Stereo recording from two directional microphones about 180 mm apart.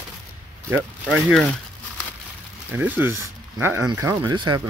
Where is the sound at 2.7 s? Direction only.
10° right (ahead or behind).